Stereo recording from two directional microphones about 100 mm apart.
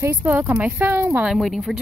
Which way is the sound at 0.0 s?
25° right (ahead or behind).